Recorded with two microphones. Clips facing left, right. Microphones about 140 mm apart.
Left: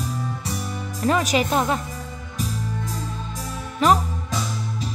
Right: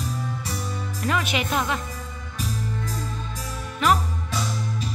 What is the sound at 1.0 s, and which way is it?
Speech, 35° left (ahead or behind).